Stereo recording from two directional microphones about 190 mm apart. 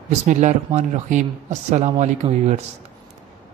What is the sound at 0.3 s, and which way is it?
A man's voice, 40° right (ahead or behind).